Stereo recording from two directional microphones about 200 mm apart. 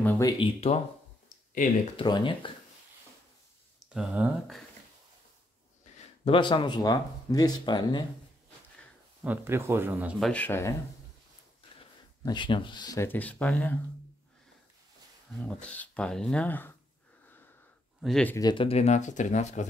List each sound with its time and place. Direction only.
0.0 s speech: 10° left (ahead or behind)
0.3 s speech: 30° left (ahead or behind)
2.0 s speech: 25° left (ahead or behind)
3.9 s speech: 5° right (ahead or behind)
6.2 s speech: 25° left (ahead or behind)
9.2 s speech: 10° right (ahead or behind); by 10.7 s 10° left (ahead or behind)
12.3 s speech: 25° left (ahead or behind); by 13.7 s 5° left (ahead or behind)
15.3 s speech: 5° left (ahead or behind)
18.0 s speech: 5° left (ahead or behind)
18.3 s speech: 20° left (ahead or behind); by 19.6 s 35° left (ahead or behind)